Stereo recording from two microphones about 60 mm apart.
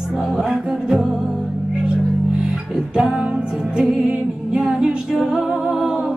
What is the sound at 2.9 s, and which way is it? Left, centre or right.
Music, centre.